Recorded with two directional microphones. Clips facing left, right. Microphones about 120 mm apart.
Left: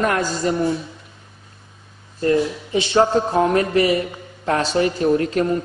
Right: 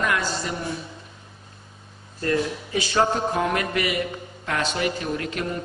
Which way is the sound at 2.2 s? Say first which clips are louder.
Left 6 dB; 25° left (ahead or behind).